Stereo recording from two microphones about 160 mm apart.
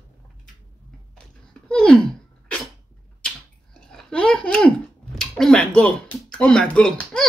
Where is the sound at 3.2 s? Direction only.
5° left (ahead or behind).